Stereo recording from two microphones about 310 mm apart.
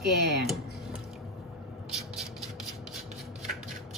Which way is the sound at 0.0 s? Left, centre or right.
Centre.